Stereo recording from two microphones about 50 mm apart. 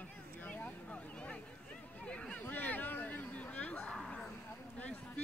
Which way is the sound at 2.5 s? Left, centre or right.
Left.